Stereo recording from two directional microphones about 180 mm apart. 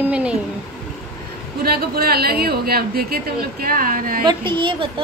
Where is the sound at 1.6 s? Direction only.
55° right (ahead or behind).